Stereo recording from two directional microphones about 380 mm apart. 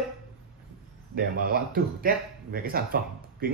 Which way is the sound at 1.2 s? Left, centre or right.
Right.